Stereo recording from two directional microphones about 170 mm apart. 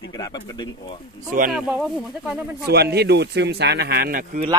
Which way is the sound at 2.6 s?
70° right (ahead or behind).